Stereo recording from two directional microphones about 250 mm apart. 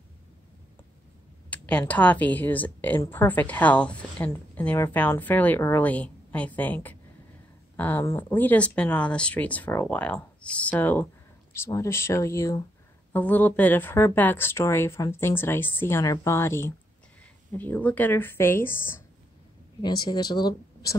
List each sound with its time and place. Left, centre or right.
1.5 s a woman's voice: centre